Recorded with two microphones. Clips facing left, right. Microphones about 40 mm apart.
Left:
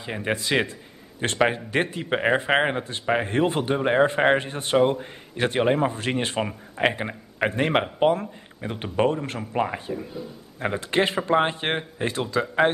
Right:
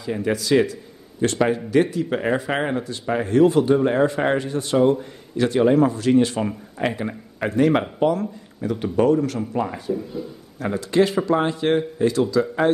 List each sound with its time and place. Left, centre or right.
0.0 s a man's voice: left